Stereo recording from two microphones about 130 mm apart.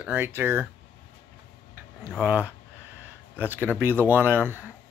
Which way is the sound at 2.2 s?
10° right (ahead or behind).